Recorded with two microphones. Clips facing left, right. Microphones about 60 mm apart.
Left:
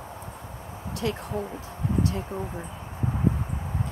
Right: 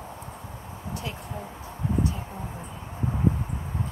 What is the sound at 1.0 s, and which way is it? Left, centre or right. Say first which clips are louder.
Speech: left 10 dB; left.